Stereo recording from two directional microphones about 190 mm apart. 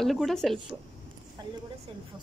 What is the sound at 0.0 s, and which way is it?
Speech, centre (ahead or behind).